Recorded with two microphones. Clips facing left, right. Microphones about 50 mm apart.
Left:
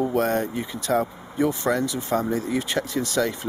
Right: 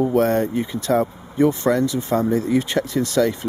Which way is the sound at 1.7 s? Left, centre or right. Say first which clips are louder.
Right 4 dB; right.